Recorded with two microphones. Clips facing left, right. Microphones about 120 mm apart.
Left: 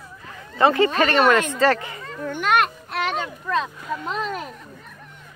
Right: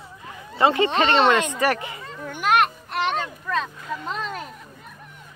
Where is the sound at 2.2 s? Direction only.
10° right (ahead or behind).